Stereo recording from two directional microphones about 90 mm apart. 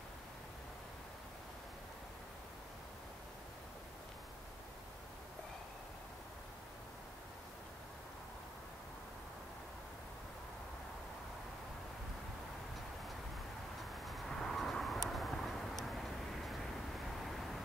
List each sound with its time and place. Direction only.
14.0 s vehicle: centre (ahead or behind)